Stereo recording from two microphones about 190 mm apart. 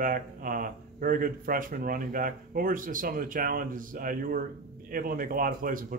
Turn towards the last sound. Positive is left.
turn(degrees=-45)  # may be behind; listen again after turning